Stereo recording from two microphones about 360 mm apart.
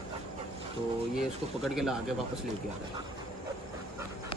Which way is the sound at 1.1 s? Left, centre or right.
Centre.